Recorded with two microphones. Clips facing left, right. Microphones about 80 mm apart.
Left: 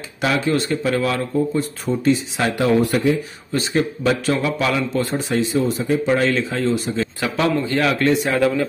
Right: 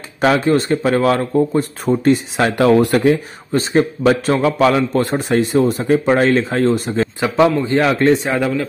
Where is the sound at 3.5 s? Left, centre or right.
Right.